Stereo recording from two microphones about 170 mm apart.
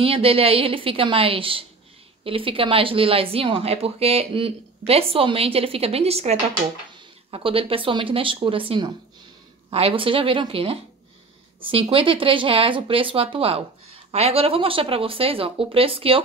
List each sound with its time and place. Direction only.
0.0 s speech: 35° right (ahead or behind)